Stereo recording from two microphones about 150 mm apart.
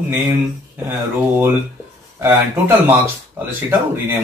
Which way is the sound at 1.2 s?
15° right (ahead or behind).